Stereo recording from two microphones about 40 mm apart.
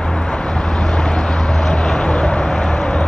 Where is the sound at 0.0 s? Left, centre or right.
Left.